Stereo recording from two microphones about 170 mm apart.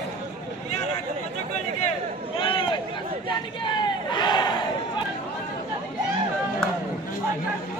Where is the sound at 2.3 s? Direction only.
30° left (ahead or behind).